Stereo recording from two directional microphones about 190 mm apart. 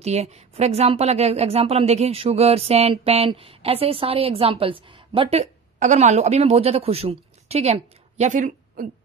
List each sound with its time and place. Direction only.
0.0 s a woman's voice: 35° right (ahead or behind)